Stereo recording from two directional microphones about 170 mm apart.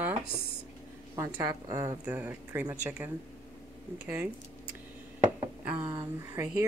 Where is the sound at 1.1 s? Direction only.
20° right (ahead or behind).